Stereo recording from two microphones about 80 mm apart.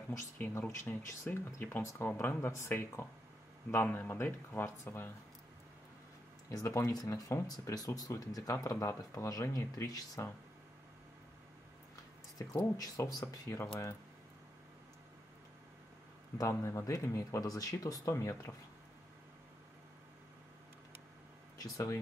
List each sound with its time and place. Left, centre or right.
0.4 s speech: left
6.5 s speech: left
12.7 s speech: left
13.2 s speech: left
16.3 s speech: left
21.5 s speech: left